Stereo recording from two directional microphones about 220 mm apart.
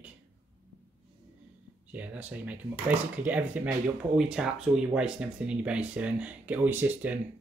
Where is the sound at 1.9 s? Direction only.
5° right (ahead or behind).